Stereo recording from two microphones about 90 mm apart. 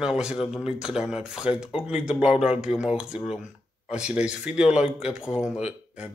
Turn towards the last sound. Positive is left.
turn(degrees=-10)  # may be behind; listen again after turning